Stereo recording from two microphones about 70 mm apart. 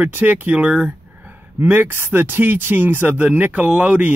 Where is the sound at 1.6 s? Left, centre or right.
Right.